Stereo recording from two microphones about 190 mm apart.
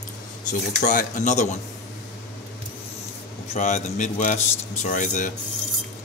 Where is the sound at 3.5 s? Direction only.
40° left (ahead or behind).